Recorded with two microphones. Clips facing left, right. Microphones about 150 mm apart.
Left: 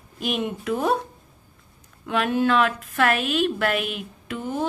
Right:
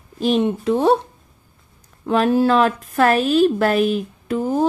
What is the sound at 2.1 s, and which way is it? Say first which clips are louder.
A woman's voice: right 6 dB; 35° right (ahead or behind).